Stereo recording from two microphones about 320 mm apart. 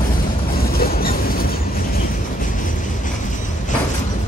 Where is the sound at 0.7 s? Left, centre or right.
Left.